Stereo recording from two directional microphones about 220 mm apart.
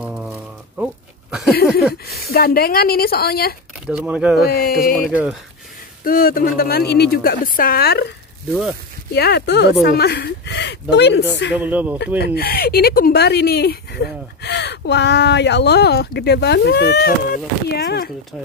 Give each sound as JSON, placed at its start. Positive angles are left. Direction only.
{"t": 0.0, "sound": "a sound", "side_deg": -5}
{"t": 2.3, "sound": "speech", "side_deg": 45}
{"t": 3.8, "sound": "speech", "side_deg": -5}
{"t": 4.5, "sound": "speech", "side_deg": 45}
{"t": 4.9, "sound": "speech", "side_deg": 0}
{"t": 6.0, "sound": "speech", "side_deg": 40}
{"t": 9.1, "sound": "speech", "side_deg": 50}
{"t": 11.5, "sound": "speech", "side_deg": -5}
{"t": 12.4, "sound": "speech", "side_deg": 45}